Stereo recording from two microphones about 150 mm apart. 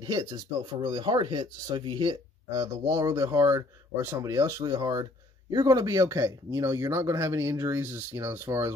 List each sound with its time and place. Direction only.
0.0 s speech: 30° right (ahead or behind)